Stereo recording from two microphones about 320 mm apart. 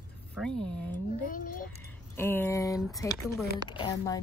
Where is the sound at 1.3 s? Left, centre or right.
Left.